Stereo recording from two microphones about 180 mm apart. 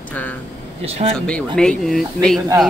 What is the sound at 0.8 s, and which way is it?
Speech, 35° right (ahead or behind).